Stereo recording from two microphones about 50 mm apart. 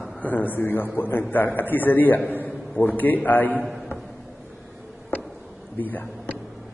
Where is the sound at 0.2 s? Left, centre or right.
Left.